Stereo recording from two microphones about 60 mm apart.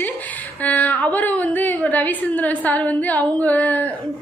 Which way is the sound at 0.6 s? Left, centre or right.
Left.